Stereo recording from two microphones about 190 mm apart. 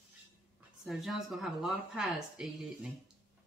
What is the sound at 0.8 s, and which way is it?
Speech, centre (ahead or behind).